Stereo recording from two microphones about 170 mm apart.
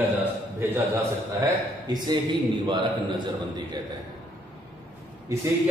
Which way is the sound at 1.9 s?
25° right (ahead or behind).